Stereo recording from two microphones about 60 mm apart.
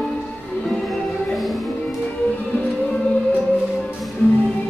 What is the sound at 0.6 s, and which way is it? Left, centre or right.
Music, centre.